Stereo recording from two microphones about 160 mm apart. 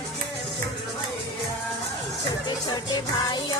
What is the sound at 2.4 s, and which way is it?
Music, 25° left (ahead or behind).